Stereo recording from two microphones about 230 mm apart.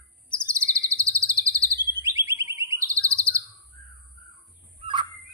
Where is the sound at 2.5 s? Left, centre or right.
Centre.